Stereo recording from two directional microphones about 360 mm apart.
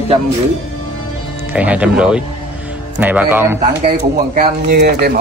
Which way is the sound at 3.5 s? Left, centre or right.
Right.